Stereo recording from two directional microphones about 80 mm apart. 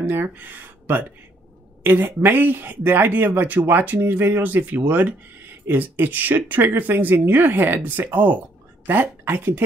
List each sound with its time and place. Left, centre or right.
0.0 s a woman's voice: right